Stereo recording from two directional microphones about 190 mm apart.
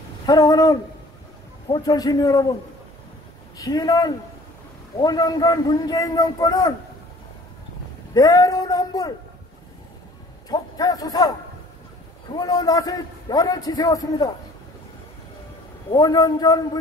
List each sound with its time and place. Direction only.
0.3 s a man's voice: 20° left (ahead or behind)
3.5 s a man's voice: 20° left (ahead or behind)
8.1 s a man's voice: 20° left (ahead or behind)
10.5 s a man's voice: 20° left (ahead or behind)
12.4 s a man's voice: 20° left (ahead or behind)
15.9 s a man's voice: 20° left (ahead or behind)